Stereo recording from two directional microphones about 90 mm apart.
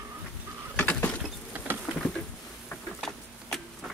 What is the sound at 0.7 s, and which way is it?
Bird, 20° left (ahead or behind).